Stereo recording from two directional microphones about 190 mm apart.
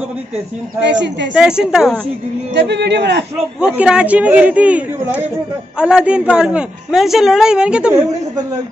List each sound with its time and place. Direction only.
0.8 s speech: 65° right (ahead or behind)
1.3 s a woman's voice: 5° right (ahead or behind)
2.5 s speech: 65° right (ahead or behind)
3.6 s a woman's voice: 5° right (ahead or behind)